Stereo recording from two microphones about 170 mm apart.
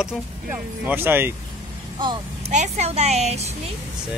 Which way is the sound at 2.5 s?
40° right (ahead or behind).